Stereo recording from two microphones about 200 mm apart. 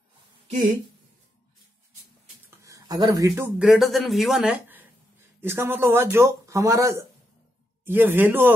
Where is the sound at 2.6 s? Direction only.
15° right (ahead or behind).